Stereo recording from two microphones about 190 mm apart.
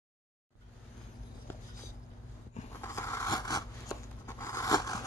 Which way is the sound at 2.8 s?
15° left (ahead or behind).